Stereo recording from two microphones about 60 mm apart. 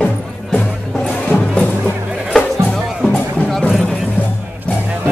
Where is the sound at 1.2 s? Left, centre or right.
Left.